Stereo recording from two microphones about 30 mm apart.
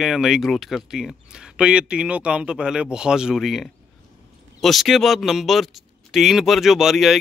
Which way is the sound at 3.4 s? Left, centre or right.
Centre.